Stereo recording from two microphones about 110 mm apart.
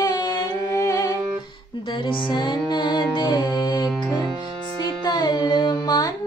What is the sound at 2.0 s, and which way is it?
Music, 50° left (ahead or behind).